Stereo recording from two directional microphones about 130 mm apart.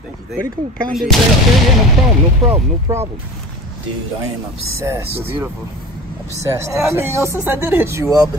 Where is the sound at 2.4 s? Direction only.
20° right (ahead or behind).